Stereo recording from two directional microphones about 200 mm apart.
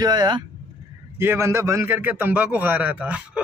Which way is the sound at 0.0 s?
20° right (ahead or behind).